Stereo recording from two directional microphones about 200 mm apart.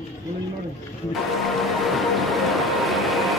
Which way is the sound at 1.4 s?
Centre (ahead or behind).